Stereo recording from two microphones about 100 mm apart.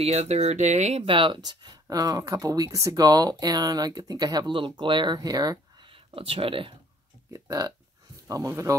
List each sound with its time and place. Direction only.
0.0 s speech: 90° right
1.1 s speech: 55° right (ahead or behind)
4.6 s speech: 60° right (ahead or behind); by 5.9 s 40° right (ahead or behind)
5.9 s speech: 65° right (ahead or behind)
7.3 s speech: 40° right (ahead or behind)